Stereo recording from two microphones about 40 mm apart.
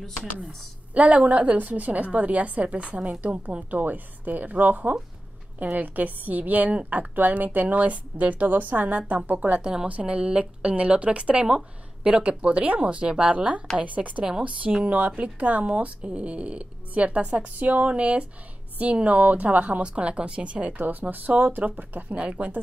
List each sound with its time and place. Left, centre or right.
0.0 s speech: centre
0.9 s a woman's voice: right
9.6 s speech: right
9.8 s a woman's voice: right
20.7 s speech: right
22.1 s a woman's voice: right